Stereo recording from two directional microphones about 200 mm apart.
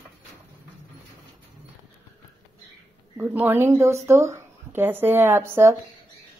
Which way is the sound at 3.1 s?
10° right (ahead or behind).